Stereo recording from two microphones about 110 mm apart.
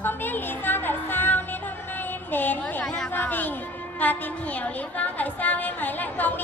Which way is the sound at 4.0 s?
15° left (ahead or behind).